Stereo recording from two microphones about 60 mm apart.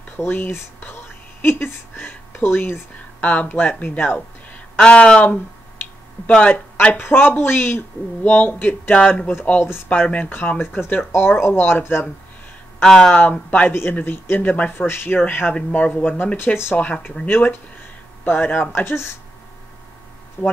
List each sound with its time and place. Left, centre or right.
0.2 s speech: left
3.2 s speech: left
4.7 s speech: centre
6.9 s speech: left
8.9 s speech: centre
11.1 s speech: left
12.8 s speech: centre
13.1 s speech: left
13.9 s speech: left
14.9 s speech: left
17.3 s speech: left
20.4 s speech: centre